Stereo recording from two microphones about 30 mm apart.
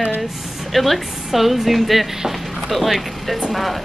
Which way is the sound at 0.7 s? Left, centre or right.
Centre.